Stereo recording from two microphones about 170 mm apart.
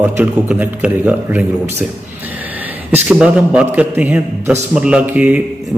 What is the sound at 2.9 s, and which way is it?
A man's voice, 5° right (ahead or behind).